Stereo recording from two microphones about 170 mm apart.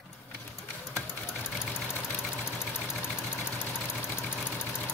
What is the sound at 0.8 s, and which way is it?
Sewing machine, 15° left (ahead or behind).